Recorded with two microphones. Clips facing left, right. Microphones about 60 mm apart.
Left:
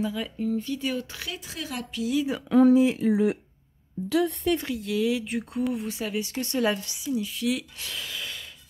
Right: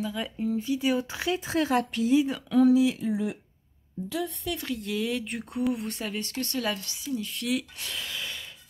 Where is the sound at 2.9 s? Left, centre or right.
Left.